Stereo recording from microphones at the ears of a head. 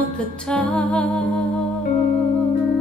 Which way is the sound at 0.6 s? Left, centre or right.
Centre.